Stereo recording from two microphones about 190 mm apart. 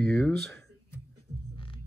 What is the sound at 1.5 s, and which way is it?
Hum, 25° left (ahead or behind).